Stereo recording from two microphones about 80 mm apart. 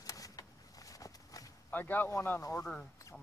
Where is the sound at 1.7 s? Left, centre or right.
Left.